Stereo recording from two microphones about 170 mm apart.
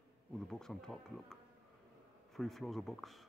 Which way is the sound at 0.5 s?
5° left (ahead or behind).